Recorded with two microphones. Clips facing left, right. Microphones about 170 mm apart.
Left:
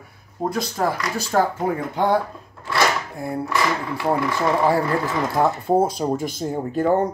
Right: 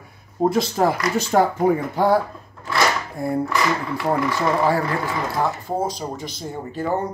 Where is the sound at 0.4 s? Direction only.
25° right (ahead or behind).